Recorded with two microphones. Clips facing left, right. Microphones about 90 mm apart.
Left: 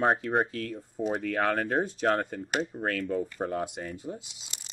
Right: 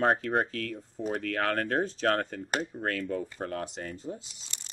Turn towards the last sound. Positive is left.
turn(degrees=10)  # may be behind; listen again after turning